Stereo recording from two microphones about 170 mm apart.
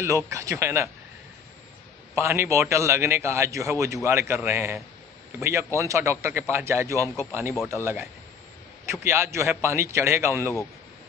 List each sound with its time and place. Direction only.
0.0 s a man's voice: 20° right (ahead or behind)
2.1 s a man's voice: 15° right (ahead or behind)
9.0 s a man's voice: 15° right (ahead or behind)